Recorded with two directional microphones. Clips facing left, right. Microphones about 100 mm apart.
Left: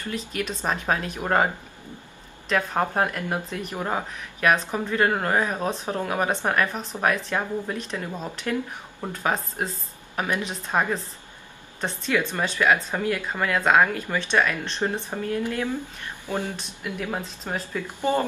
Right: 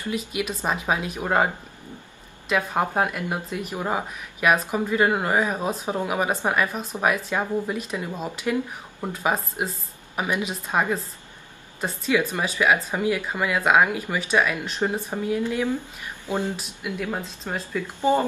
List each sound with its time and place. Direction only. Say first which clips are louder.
0.0 s speech: right 2 dB; 10° right (ahead or behind)
17.1 s speech: even; 10° left (ahead or behind)